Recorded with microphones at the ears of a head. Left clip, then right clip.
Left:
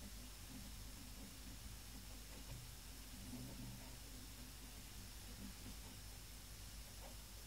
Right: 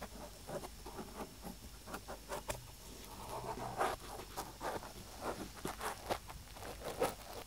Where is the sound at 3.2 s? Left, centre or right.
Right.